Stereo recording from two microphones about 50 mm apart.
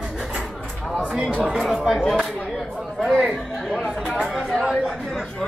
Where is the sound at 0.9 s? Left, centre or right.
Centre.